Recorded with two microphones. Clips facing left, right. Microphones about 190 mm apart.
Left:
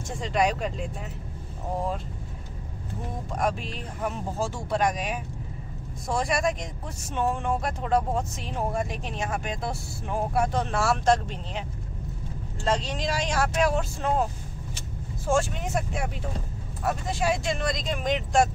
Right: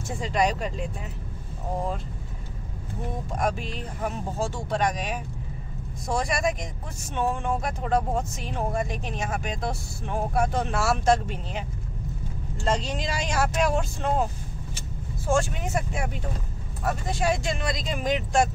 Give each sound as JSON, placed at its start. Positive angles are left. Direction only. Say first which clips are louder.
{"t": 0.2, "sound": "speech", "louder": "even", "side_deg": 0}
{"t": 3.3, "sound": "speech", "louder": "even", "side_deg": 0}
{"t": 12.6, "sound": "speech", "louder": "even", "side_deg": 0}
{"t": 15.2, "sound": "speech", "louder": "even", "side_deg": 0}